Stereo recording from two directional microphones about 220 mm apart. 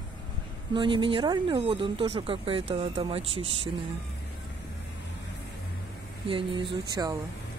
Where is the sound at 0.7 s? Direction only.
20° right (ahead or behind).